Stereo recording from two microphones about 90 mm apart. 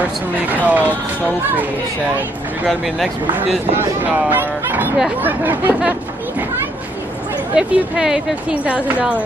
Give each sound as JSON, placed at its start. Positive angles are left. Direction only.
{"t": 0.7, "sound": "speech", "side_deg": -15}
{"t": 2.6, "sound": "speech", "side_deg": 0}
{"t": 3.7, "sound": "speech", "side_deg": -20}
{"t": 7.5, "sound": "speech", "side_deg": -10}